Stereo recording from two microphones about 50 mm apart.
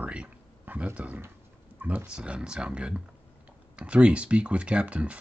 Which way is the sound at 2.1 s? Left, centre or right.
Right.